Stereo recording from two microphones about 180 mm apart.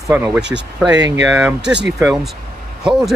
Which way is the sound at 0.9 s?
90° right.